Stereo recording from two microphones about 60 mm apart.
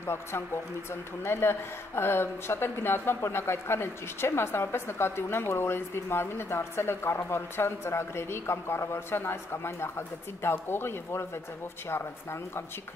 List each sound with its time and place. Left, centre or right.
0.0 s speech: left